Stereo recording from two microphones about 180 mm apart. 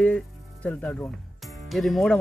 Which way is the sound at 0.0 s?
5° left (ahead or behind).